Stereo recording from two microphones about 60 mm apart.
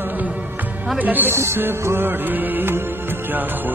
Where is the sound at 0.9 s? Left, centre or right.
Right.